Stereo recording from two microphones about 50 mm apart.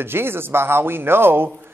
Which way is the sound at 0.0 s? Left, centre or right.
Right.